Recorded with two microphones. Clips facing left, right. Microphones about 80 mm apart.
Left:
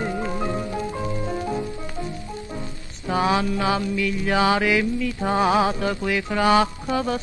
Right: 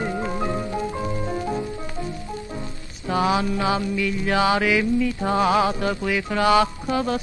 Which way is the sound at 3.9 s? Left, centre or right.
Centre.